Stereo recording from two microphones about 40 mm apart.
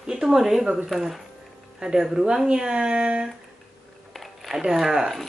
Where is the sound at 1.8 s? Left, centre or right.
Centre.